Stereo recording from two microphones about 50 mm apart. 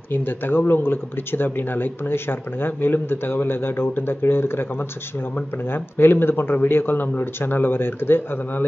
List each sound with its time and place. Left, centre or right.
0.1 s speech: left
5.7 s speech: left